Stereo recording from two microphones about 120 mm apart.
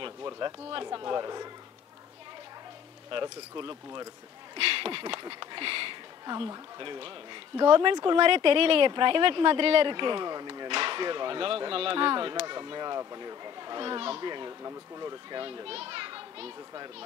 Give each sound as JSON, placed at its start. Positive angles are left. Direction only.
{"t": 0.0, "sound": "a sound", "side_deg": -35}
{"t": 0.5, "sound": "speech", "side_deg": -45}
{"t": 0.8, "sound": "a child's voice", "side_deg": -35}
{"t": 3.1, "sound": "a child's voice", "side_deg": -45}
{"t": 4.6, "sound": "a child's voice", "side_deg": -50}
{"t": 14.6, "sound": "a child's voice", "side_deg": -30}
{"t": 15.4, "sound": "a child's voice", "side_deg": -45}